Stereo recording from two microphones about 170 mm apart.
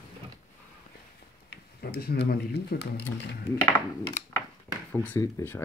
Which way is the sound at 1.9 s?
65° left (ahead or behind).